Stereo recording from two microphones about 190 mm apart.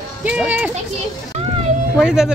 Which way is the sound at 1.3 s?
35° right (ahead or behind).